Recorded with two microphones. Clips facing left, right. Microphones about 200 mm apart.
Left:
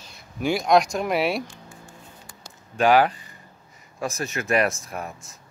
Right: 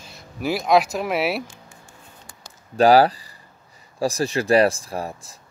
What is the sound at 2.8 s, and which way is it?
Speech, 35° right (ahead or behind).